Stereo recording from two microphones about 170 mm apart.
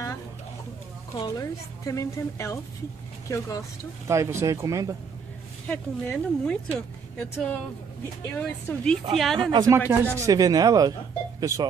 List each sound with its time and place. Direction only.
1.1 s a woman's voice: 20° left (ahead or behind)
4.1 s speech: 15° right (ahead or behind)
5.7 s speech: 5° left (ahead or behind)
9.4 s speech: 25° right (ahead or behind)